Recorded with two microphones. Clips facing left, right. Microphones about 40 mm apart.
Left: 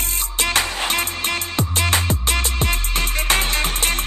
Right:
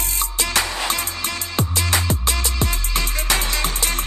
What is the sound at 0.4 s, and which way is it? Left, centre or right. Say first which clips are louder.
Music: left 2 dB; left.